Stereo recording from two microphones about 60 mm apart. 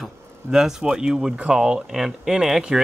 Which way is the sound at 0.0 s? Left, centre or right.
Centre.